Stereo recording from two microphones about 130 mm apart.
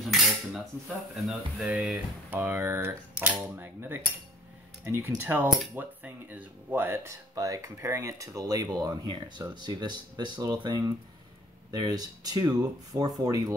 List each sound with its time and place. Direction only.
0.0 s cutlery: centre (ahead or behind)
3.3 s speech: 15° right (ahead or behind)